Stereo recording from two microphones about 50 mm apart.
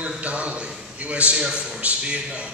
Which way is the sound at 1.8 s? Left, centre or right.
Right.